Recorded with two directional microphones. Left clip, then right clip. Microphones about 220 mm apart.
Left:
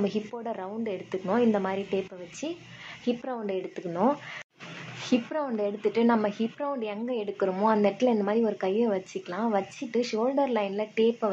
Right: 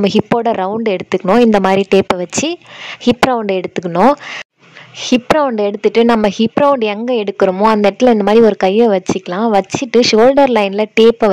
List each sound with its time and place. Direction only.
0.0 s speech: 45° right (ahead or behind)